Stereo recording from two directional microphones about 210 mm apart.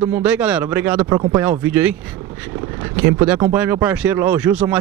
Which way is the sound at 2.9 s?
10° right (ahead or behind).